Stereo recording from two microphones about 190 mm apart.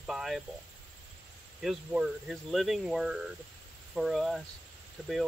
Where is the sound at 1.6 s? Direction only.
5° right (ahead or behind).